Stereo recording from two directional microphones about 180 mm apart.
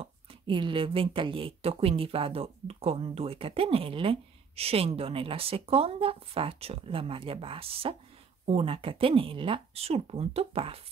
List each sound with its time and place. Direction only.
0.0 s a woman's voice: 30° right (ahead or behind)